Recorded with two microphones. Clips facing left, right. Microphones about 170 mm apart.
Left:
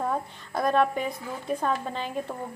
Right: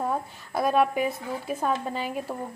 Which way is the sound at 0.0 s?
5° right (ahead or behind).